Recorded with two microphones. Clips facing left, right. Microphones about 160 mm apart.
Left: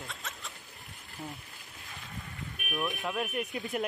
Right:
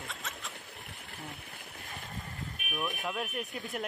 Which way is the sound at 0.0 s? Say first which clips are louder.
Even; centre (ahead or behind).